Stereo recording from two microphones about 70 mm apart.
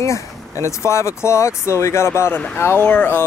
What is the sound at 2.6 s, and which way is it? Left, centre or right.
Speech, left.